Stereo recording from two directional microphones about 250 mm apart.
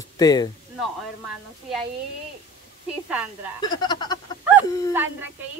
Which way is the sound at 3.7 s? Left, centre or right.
Centre.